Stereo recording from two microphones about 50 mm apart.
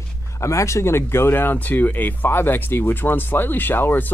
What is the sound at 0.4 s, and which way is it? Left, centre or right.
Speech, left.